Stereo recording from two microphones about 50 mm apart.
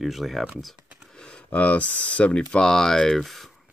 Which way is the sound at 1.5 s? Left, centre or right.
Left.